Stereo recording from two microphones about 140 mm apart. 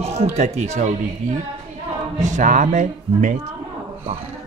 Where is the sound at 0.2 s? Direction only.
55° right (ahead or behind).